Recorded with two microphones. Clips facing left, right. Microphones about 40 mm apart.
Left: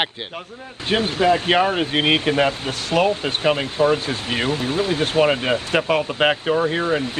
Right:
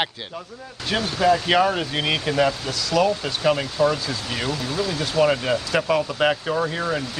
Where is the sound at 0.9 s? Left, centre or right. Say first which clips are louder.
Left 2 dB; left.